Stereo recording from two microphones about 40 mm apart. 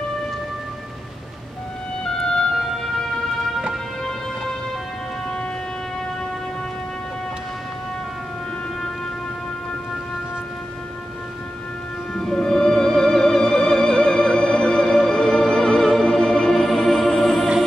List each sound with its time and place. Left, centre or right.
2.0 s music: centre
12.3 s music: centre